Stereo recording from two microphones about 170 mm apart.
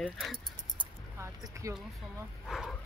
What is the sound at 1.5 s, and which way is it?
Speech, 20° right (ahead or behind).